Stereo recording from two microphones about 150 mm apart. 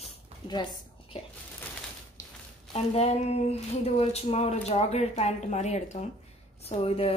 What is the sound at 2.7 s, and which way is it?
A woman's voice, 45° left (ahead or behind).